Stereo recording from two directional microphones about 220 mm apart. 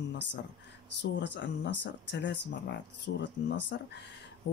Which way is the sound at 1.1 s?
55° left (ahead or behind).